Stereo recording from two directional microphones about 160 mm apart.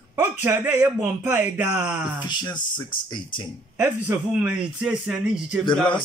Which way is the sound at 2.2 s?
25° left (ahead or behind).